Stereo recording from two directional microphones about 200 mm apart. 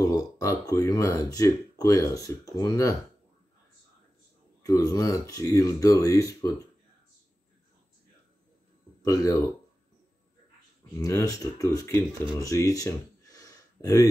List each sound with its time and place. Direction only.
0.1 s speech: 15° left (ahead or behind)
4.6 s speech: 15° left (ahead or behind)
9.0 s speech: 15° left (ahead or behind)
11.0 s speech: 15° left (ahead or behind)
12.4 s a sound: 15° left (ahead or behind)